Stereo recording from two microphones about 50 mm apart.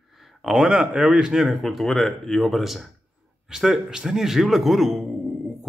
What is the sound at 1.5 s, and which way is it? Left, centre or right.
Speech, centre.